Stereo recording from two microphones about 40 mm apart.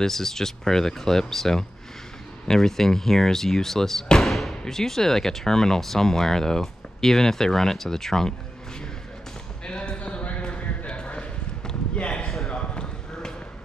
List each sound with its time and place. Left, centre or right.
0.0 s speech: centre
9.7 s a sound: left
12.4 s basketball bounce: left